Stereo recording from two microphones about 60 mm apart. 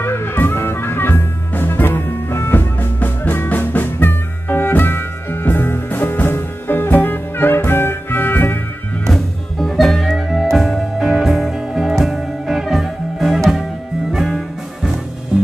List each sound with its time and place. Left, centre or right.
0.0 s music: left
9.0 s music: centre
15.3 s music: centre